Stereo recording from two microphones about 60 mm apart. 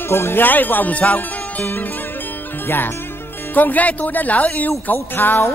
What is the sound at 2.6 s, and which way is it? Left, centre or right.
Speech, left.